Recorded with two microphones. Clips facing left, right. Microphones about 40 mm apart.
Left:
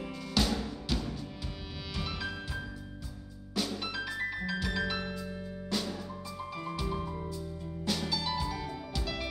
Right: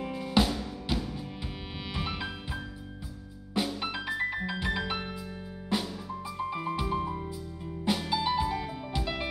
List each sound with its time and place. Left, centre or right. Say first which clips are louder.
0.0 s music: right 5 dB; centre
2.0 s music: right 2 dB; right
3.5 s music: right 3 dB; centre